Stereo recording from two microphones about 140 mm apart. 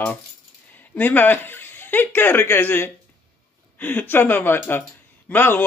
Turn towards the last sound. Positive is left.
turn(degrees=15)  # may be behind; listen again after turning